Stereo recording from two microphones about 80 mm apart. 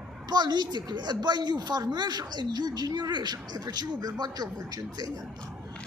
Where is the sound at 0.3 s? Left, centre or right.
Right.